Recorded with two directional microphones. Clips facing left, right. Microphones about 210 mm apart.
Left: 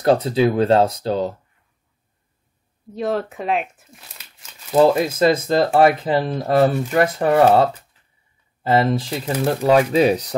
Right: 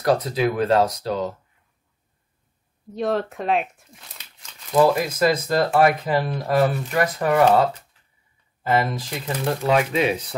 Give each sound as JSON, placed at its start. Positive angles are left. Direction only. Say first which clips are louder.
{"t": 0.0, "sound": "speech", "louder": "left 4 dB", "side_deg": 25}
{"t": 2.9, "sound": "speech", "louder": "left 1 dB", "side_deg": 0}
{"t": 4.7, "sound": "speech", "louder": "left 3 dB", "side_deg": 25}
{"t": 8.6, "sound": "speech", "louder": "left 4 dB", "side_deg": 30}